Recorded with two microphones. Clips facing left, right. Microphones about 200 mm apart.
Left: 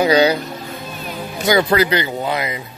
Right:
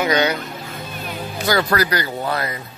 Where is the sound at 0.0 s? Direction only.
30° left (ahead or behind).